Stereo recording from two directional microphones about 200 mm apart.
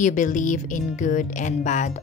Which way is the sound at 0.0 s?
40° left (ahead or behind).